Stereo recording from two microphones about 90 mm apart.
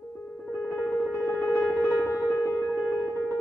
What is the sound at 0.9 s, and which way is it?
Music, 25° left (ahead or behind).